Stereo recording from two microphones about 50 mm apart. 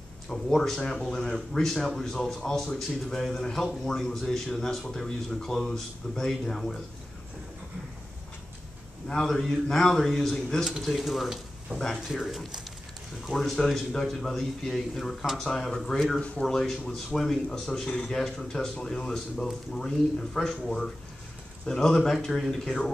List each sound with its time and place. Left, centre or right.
0.3 s speech: centre
9.0 s speech: centre
13.6 s speech: centre
14.0 s speech: centre